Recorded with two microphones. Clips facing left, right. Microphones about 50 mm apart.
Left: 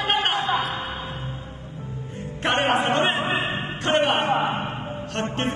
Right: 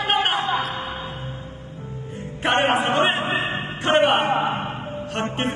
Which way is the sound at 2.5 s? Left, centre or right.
Right.